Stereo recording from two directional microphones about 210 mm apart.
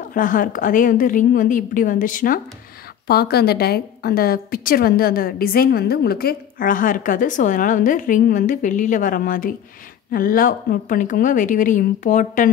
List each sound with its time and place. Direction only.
0.1 s a woman's voice: 40° left (ahead or behind)